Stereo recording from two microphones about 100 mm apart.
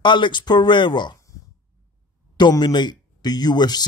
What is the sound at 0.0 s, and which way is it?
Speech, 50° left (ahead or behind).